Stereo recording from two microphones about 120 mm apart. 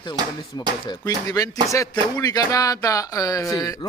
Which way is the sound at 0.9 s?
30° left (ahead or behind).